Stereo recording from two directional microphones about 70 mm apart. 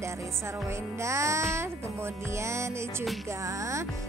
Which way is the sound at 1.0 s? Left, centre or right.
Right.